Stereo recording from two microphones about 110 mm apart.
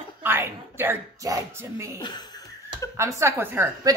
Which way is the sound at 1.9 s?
40° left (ahead or behind).